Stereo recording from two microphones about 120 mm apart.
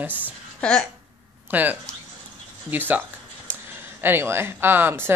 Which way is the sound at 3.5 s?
15° right (ahead or behind).